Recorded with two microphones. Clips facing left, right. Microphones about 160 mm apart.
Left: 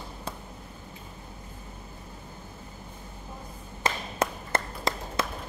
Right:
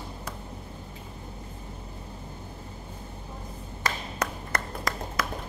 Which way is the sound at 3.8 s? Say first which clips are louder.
Left 3 dB; 25° left (ahead or behind).